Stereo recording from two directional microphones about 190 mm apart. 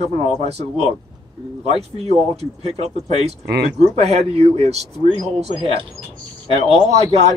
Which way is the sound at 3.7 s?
35° right (ahead or behind).